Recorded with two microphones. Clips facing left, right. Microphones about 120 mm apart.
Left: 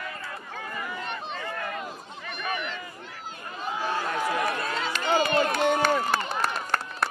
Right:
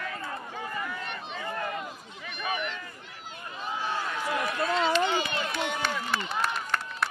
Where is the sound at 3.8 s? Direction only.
45° left (ahead or behind).